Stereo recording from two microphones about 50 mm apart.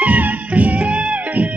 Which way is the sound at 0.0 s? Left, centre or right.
Right.